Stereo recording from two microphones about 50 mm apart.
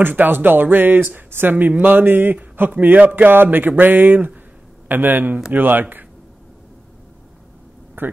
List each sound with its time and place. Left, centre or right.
0.0 s speech: right
8.0 s speech: right